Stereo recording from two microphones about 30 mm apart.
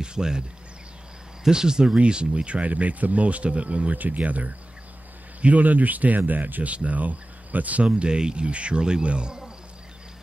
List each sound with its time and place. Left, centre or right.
0.0 s speech: right
1.5 s speech: right
2.0 s speech: right
3.9 s speech: right
6.7 s speech: right
7.8 s speech: right